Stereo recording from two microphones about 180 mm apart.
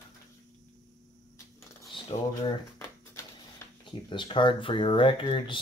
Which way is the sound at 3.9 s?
25° left (ahead or behind).